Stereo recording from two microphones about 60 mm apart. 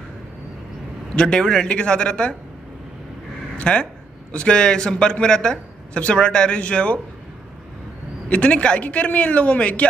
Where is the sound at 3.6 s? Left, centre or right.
Centre.